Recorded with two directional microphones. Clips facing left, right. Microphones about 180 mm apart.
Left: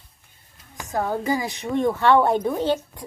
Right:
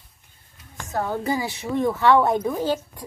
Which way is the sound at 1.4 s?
5° right (ahead or behind).